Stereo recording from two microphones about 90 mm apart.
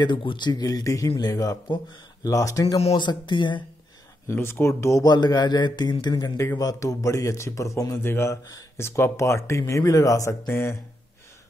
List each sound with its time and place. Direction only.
0.0 s a man's voice: 65° left (ahead or behind); by 2.8 s 35° left (ahead or behind)
2.9 s speech: 60° left (ahead or behind)
4.3 s speech: 25° left (ahead or behind)
5.0 s speech: 50° left (ahead or behind)
6.3 s a man's voice: 30° left (ahead or behind)